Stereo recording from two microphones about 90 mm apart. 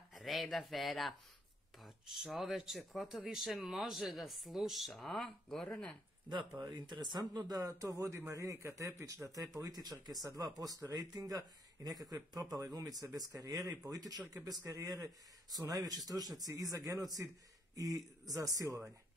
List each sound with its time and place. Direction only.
0.1 s speech: centre (ahead or behind)
6.7 s speech: 55° right (ahead or behind); by 18.9 s 35° right (ahead or behind)